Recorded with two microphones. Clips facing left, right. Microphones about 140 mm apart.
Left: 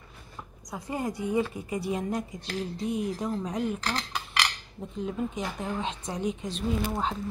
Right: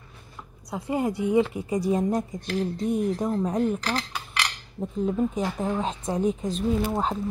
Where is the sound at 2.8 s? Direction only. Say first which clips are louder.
Right 3 dB; 50° right (ahead or behind).